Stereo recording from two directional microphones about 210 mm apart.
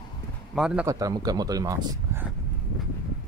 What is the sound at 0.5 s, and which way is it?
Speech, 5° right (ahead or behind).